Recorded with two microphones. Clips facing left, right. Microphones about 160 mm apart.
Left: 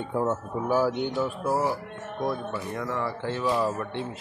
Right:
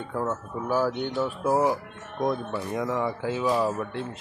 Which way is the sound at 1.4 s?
15° right (ahead or behind).